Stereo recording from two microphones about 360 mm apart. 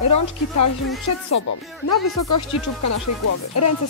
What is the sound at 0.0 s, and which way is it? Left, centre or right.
Speech, left.